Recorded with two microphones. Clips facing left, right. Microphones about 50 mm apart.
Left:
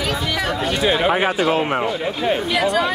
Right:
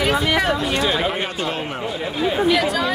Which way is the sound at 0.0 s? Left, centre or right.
Right.